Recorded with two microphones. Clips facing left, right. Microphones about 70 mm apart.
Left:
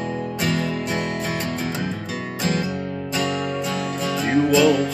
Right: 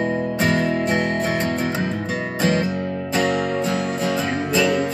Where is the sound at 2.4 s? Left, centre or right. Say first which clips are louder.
Right 4 dB; right.